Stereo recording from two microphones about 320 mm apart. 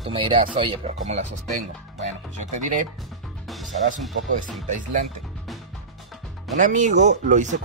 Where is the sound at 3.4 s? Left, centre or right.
Centre.